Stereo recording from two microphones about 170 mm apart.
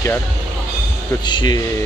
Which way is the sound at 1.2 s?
25° left (ahead or behind).